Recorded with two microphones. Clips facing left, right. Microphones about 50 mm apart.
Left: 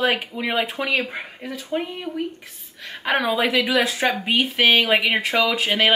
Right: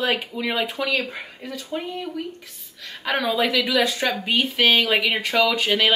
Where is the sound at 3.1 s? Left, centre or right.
Centre.